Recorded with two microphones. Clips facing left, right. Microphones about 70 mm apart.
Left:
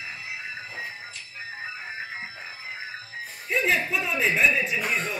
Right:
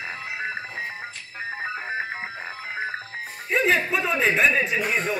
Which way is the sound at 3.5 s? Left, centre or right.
Centre.